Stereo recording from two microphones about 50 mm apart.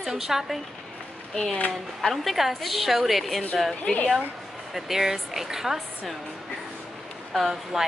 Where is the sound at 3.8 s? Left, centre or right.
Left.